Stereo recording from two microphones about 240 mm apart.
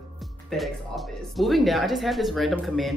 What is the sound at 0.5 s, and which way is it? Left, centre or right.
A woman's voice, centre.